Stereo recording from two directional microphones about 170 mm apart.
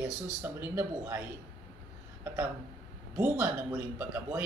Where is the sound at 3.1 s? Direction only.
15° right (ahead or behind).